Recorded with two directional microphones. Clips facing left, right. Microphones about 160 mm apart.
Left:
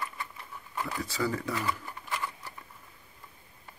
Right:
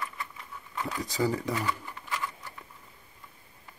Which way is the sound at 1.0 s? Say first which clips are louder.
Right 4 dB; 15° right (ahead or behind).